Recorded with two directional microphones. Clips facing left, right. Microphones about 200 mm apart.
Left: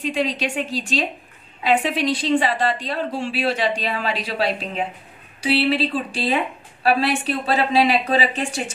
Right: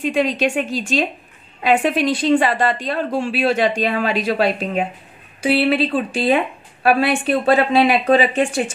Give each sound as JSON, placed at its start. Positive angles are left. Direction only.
{"t": 0.0, "sound": "a woman's voice", "side_deg": -50}